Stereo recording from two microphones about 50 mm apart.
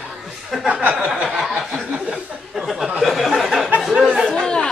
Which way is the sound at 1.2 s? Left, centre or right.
Centre.